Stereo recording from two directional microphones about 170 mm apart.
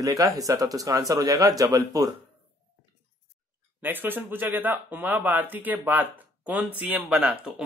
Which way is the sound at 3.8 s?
10° right (ahead or behind).